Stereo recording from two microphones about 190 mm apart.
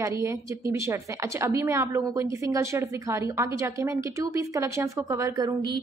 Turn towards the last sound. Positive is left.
turn(degrees=-20)  # may be behind; listen again after turning